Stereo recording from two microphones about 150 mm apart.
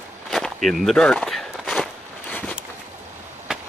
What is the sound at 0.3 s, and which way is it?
Walk, centre (ahead or behind).